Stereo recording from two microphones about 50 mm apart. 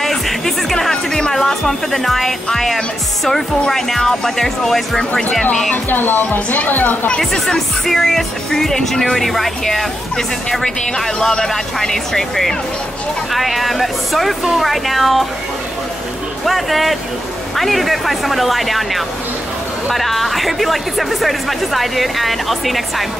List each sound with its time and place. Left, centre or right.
0.0 s music: centre
3.3 s speech: centre
5.9 s speech: left
7.2 s speech: centre
16.4 s speech: centre